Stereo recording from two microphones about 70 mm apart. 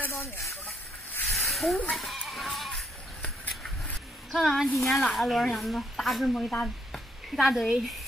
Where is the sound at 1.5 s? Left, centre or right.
Centre.